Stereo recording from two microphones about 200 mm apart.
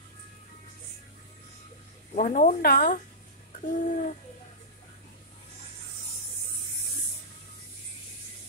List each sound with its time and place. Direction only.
2.1 s speech: 35° left (ahead or behind)